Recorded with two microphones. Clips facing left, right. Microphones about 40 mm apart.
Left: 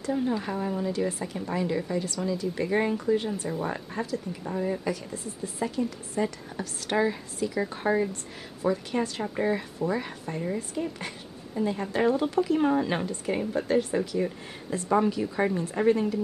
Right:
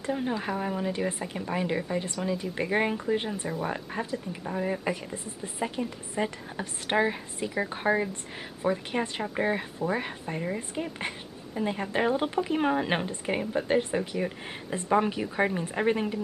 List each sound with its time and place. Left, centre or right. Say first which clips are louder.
0.0 s speech: left 2 dB; right
4.4 s speech: even; centre
4.8 s speech: even; right
12.4 s speech: left 2 dB; right